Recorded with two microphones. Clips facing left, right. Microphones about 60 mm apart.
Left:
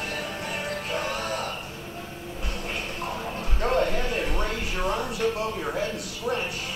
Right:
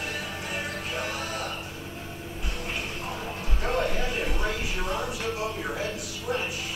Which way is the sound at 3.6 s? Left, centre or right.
Left.